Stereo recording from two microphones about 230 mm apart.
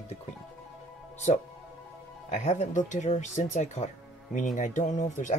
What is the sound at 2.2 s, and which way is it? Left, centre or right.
Speech, left.